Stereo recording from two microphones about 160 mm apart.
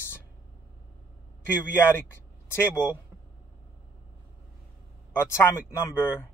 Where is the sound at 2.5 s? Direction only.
15° left (ahead or behind).